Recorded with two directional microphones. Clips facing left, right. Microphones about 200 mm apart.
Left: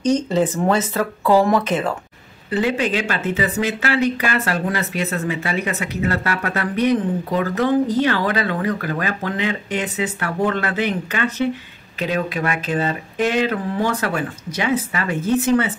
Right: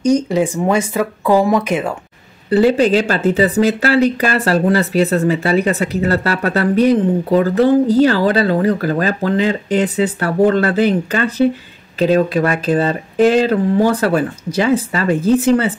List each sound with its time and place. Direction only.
0.0 s speech: 10° right (ahead or behind)
2.5 s speech: 35° right (ahead or behind)